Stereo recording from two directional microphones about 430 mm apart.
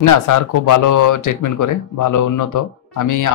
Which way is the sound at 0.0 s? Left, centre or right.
Left.